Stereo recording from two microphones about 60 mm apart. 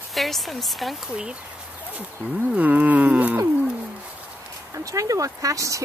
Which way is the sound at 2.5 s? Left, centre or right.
Right.